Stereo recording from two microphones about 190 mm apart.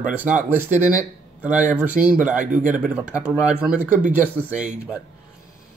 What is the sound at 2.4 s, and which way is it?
Speech, 45° right (ahead or behind).